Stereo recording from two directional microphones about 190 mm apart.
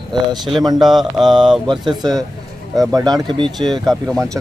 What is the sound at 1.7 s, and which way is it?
Speech, 25° right (ahead or behind).